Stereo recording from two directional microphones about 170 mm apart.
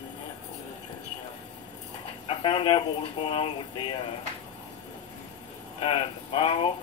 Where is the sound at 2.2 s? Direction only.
30° left (ahead or behind).